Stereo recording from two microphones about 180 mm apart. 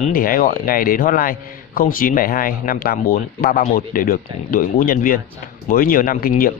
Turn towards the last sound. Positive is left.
turn(degrees=50)  # may be behind; listen again after turning